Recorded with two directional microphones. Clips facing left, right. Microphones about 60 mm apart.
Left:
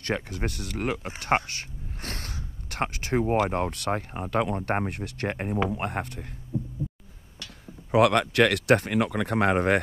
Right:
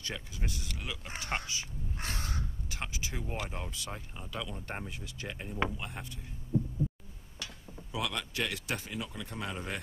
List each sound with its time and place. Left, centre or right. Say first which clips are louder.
0.0 s speech: left 11 dB; left
7.9 s speech: left 16 dB; left